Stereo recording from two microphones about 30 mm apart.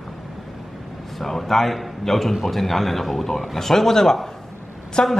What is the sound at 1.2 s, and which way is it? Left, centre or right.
A man's voice, centre.